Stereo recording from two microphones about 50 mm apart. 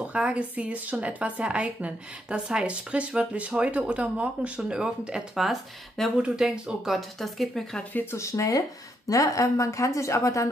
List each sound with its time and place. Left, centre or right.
0.0 s a woman's voice: right
4.6 s speech: centre
6.2 s speech: centre
7.0 s speech: centre
8.1 s a woman's voice: left